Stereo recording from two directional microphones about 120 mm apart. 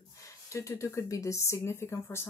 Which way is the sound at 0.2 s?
25° left (ahead or behind).